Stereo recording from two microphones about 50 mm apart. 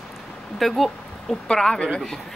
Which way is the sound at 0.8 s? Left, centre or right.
Centre.